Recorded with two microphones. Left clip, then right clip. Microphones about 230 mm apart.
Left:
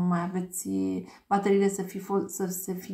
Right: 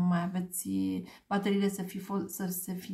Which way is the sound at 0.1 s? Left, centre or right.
Right.